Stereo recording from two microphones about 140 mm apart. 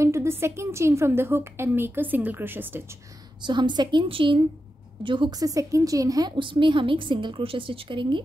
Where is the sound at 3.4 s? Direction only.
35° right (ahead or behind).